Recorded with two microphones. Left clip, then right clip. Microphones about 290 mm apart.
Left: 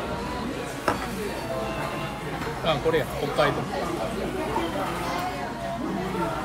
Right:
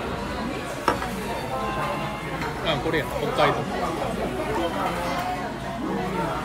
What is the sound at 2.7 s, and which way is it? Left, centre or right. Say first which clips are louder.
Speech: left 2 dB; centre.